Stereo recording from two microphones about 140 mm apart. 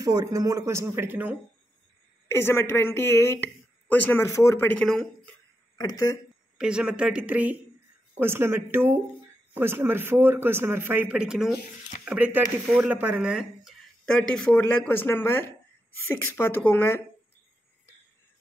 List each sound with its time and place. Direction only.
0.0 s speech: 25° right (ahead or behind)
2.2 s a woman's voice: 15° left (ahead or behind)
4.8 s speech: 5° left (ahead or behind)
5.8 s speech: 25° left (ahead or behind)
6.6 s a man's voice: 5° right (ahead or behind); by 17.0 s 15° left (ahead or behind)